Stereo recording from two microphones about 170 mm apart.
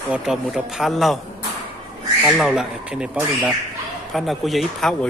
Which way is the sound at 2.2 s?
5° right (ahead or behind).